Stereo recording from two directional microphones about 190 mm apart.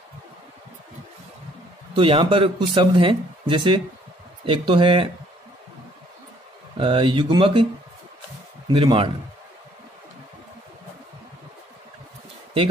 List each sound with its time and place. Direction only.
2.0 s speech: 30° right (ahead or behind)
6.8 s speech: 25° right (ahead or behind)
8.6 s speech: 25° right (ahead or behind)